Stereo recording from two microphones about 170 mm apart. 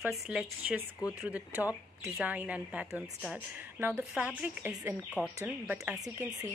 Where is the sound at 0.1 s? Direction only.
5° right (ahead or behind).